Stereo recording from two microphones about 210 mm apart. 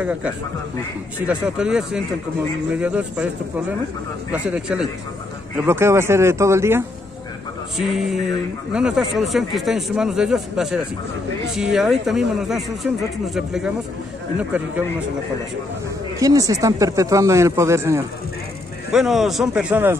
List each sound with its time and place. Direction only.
0.0 s speech: 5° right (ahead or behind)
4.3 s speech: 5° right (ahead or behind)
7.7 s speech: centre (ahead or behind)
16.2 s speech: 15° right (ahead or behind)
18.9 s speech: centre (ahead or behind)